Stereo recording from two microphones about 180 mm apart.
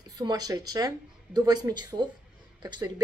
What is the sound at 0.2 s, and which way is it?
A woman's voice, 20° right (ahead or behind).